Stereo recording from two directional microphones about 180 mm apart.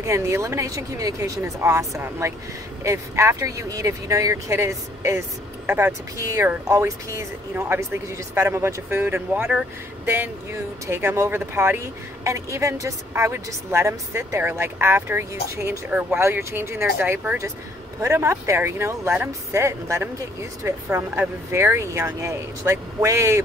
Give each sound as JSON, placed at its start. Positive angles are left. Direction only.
{"t": 0.0, "sound": "speech", "side_deg": -15}